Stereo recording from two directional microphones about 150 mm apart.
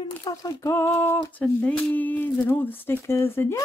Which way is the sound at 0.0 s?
25° left (ahead or behind).